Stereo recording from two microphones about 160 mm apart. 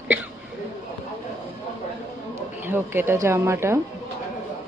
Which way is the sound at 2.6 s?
15° right (ahead or behind).